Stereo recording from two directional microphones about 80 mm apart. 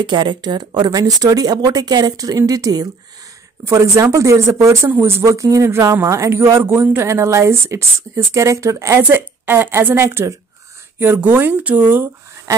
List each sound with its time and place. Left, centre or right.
0.0 s speech: right
3.6 s a woman's voice: right
4.8 s speech: right
5.2 s a woman's voice: right
11.0 s speech: right